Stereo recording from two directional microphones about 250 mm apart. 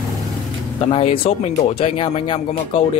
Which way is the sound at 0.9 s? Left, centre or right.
Left.